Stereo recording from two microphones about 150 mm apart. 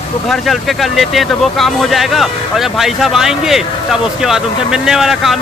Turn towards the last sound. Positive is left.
turn(degrees=0)  # may be behind; listen again after turning